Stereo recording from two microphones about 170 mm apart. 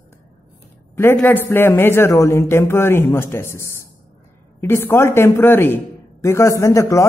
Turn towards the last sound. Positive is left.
turn(degrees=15)  # may be behind; listen again after turning